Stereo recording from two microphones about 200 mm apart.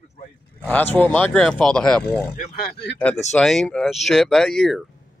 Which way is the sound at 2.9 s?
5° left (ahead or behind).